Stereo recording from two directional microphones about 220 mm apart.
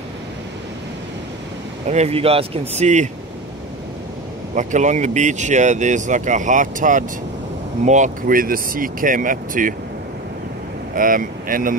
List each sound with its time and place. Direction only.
1.9 s speech: 30° right (ahead or behind)
4.6 s speech: 35° right (ahead or behind)
11.0 s speech: 40° right (ahead or behind)